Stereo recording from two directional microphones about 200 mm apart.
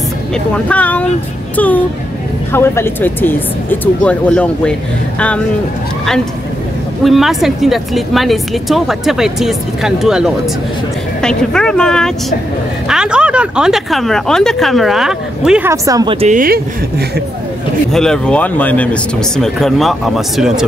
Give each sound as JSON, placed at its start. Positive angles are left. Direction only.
{"t": 0.7, "sound": "speech", "side_deg": 5}
{"t": 2.5, "sound": "speech", "side_deg": 10}
{"t": 7.0, "sound": "speech", "side_deg": 0}
{"t": 15.7, "sound": "speech", "side_deg": -15}
{"t": 16.2, "sound": "speech", "side_deg": -40}
{"t": 17.9, "sound": "speech", "side_deg": 5}